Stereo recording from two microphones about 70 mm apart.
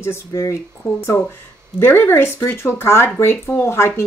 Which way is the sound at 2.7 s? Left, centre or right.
Left.